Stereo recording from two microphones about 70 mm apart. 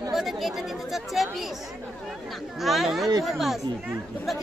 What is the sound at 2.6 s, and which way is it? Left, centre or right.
Speech, centre.